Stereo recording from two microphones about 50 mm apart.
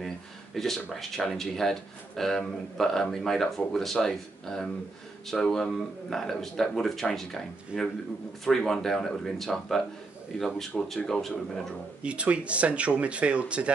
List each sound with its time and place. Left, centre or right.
0.6 s speech: centre
10.8 s speech: left
11.1 s speech: centre
12.0 s speech: right